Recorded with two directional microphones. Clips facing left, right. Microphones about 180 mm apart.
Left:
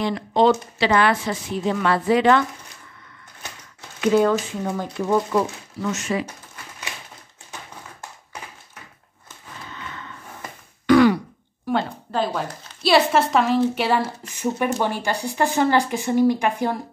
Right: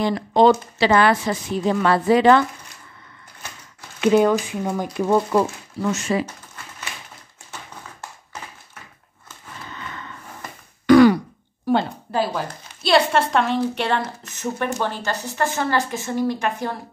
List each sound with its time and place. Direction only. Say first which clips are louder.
0.0 s speech: right 2 dB; 40° right (ahead or behind)
4.0 s speech: right 2 dB; 15° right (ahead or behind)
4.9 s speech: right 2 dB; 25° right (ahead or behind)
10.9 s throat clearing: right 3 dB; 40° right (ahead or behind)
11.7 s a sound: right 3 dB; 35° right (ahead or behind)
12.1 s a woman's voice: right 1 dB; 5° right (ahead or behind); by 16.7 s 15° left (ahead or behind)